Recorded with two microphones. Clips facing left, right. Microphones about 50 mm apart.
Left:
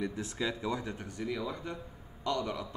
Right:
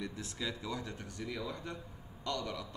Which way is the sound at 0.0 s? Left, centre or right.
Left.